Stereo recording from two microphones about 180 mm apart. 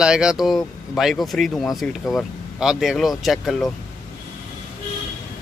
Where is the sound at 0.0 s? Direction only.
5° right (ahead or behind).